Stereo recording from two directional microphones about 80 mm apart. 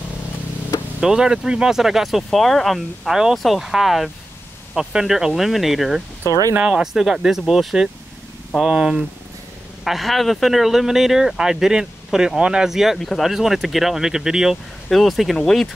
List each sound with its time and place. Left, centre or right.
1.0 s speech: centre
6.5 s speech: centre
9.8 s speech: centre